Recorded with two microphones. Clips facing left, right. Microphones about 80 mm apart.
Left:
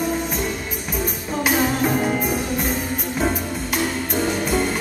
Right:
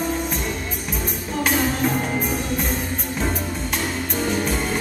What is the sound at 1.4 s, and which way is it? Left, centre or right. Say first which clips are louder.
Music: left 2 dB; centre.